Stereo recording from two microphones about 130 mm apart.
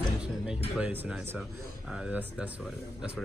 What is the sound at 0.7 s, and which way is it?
A man's voice, 10° right (ahead or behind).